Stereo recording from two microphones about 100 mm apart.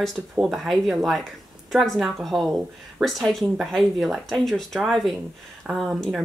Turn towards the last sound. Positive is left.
turn(degrees=0)  # may be behind; listen again after turning